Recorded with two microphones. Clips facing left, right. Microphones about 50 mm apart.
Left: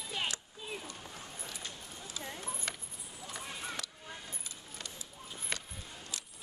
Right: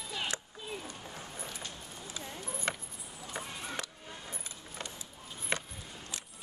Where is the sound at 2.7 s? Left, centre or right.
Right.